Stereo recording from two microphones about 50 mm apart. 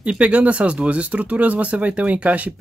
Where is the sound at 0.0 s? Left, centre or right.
Right.